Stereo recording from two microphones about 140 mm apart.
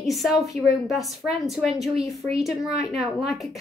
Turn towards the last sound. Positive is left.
turn(degrees=0)  # may be behind; listen again after turning